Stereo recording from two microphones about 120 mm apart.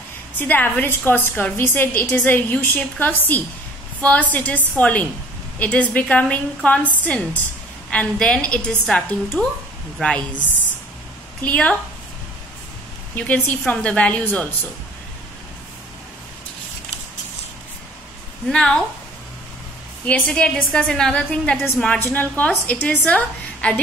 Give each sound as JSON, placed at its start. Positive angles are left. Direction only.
{"t": 0.4, "sound": "a woman's voice", "side_deg": 15}
{"t": 11.4, "sound": "a woman's voice", "side_deg": 10}
{"t": 13.1, "sound": "a woman's voice", "side_deg": 15}
{"t": 18.5, "sound": "a woman's voice", "side_deg": 5}
{"t": 20.2, "sound": "a woman's voice", "side_deg": 10}